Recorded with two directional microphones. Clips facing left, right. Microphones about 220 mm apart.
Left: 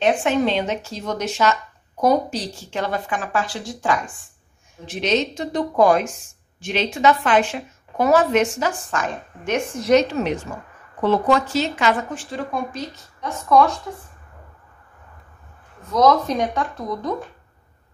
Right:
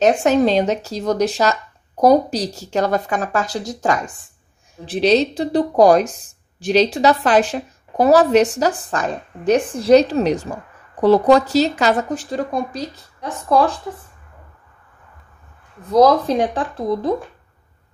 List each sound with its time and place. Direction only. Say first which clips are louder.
0.0 s speech: right 4 dB; 40° right (ahead or behind)
15.8 s speech: right 4 dB; 35° right (ahead or behind)